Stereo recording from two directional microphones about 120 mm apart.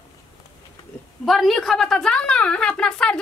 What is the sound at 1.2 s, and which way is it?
A woman's voice, centre (ahead or behind).